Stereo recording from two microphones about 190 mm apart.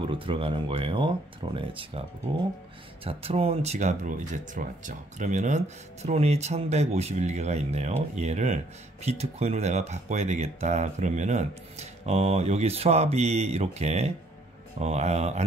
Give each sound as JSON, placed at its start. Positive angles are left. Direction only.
{"t": 0.0, "sound": "speech", "side_deg": -25}